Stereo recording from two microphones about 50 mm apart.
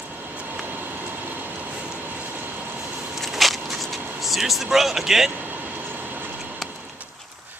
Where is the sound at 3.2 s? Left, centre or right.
Centre.